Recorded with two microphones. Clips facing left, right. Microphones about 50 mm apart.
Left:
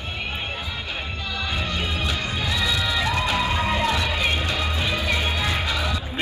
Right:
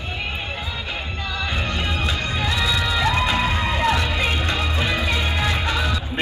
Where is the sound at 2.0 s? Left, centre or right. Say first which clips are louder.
Right 2 dB; right.